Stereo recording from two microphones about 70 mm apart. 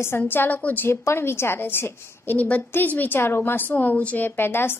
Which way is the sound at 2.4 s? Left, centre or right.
Left.